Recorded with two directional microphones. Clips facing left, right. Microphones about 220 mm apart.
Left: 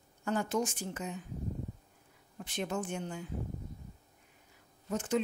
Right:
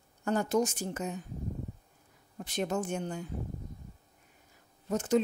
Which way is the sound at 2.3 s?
40° right (ahead or behind).